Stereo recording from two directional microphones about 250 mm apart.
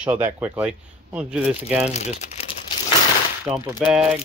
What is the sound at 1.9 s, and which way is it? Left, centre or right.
Speech, left.